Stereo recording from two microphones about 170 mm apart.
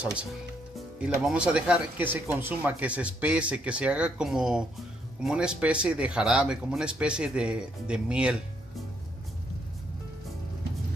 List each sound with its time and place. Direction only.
0.7 s speech: 5° right (ahead or behind)